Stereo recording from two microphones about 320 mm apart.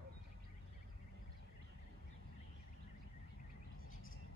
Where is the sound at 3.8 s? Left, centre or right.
Left.